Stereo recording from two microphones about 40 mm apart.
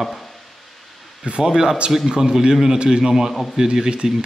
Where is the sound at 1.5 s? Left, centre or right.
Centre.